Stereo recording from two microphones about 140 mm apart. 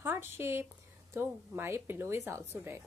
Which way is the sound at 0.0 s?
15° right (ahead or behind).